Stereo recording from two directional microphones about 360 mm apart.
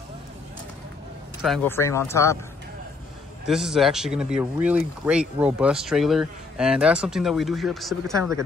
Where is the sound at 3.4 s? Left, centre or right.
Centre.